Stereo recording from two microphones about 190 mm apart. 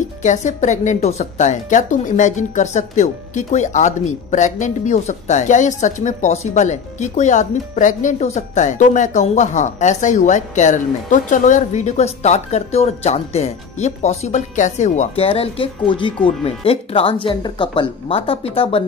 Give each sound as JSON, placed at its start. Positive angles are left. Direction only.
{"t": 0.2, "sound": "a woman's voice", "side_deg": 40}